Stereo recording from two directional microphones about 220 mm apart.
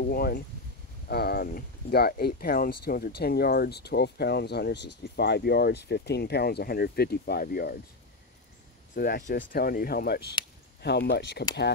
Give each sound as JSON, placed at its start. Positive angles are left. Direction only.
{"t": 0.0, "sound": "speech", "side_deg": 45}
{"t": 8.9, "sound": "speech", "side_deg": 45}